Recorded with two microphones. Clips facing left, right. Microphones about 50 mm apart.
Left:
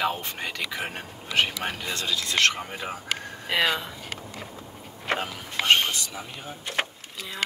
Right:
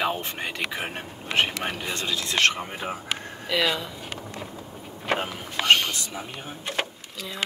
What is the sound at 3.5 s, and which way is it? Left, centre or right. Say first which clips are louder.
Speech: even; left.